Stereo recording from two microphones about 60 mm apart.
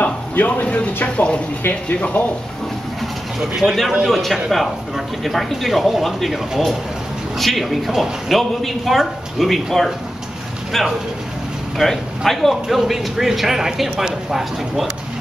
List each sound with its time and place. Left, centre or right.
0.0 s a sound: left
1.0 s speech: centre
1.6 s speech: left
2.0 s speech: left
3.0 s pigeon: centre
4.0 s a man's voice: centre
11.8 s a man's voice: centre